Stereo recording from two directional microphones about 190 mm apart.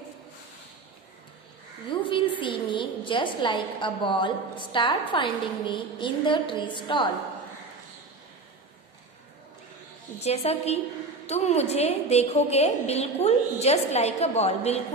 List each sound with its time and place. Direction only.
1.9 s a woman's voice: 25° left (ahead or behind)
10.2 s a woman's voice: 35° left (ahead or behind)